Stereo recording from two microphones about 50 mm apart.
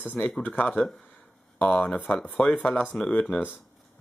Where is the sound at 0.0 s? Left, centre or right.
Left.